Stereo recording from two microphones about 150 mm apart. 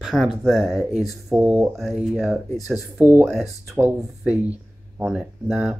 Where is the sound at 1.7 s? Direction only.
Centre (ahead or behind).